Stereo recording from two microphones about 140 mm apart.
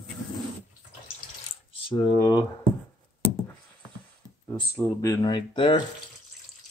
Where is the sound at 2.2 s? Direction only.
30° left (ahead or behind).